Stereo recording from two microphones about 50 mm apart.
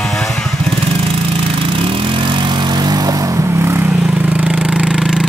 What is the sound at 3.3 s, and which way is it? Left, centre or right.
Vehicle, right.